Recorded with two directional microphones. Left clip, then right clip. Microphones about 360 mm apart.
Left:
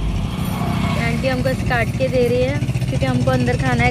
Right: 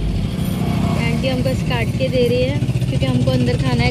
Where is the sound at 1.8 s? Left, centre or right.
Left.